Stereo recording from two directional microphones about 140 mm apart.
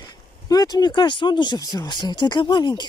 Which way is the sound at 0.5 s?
25° left (ahead or behind).